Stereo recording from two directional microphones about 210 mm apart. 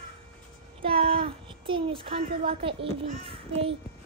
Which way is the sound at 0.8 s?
25° right (ahead or behind).